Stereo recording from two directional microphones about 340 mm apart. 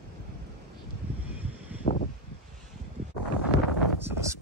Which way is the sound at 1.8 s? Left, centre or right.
Left.